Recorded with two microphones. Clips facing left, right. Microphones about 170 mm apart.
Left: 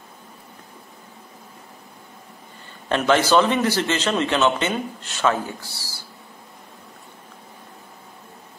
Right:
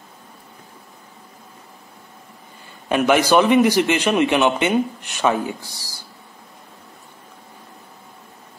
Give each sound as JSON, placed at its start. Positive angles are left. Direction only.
{"t": 2.9, "sound": "a man's voice", "side_deg": -10}